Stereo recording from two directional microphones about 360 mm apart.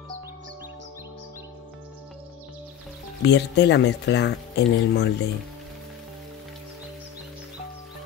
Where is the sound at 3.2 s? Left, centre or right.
Left.